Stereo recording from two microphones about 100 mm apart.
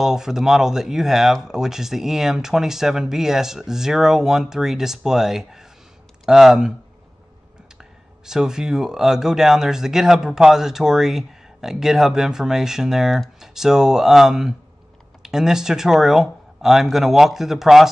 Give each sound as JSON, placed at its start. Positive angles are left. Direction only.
{"t": 0.0, "sound": "speech", "side_deg": -5}
{"t": 8.3, "sound": "speech", "side_deg": -5}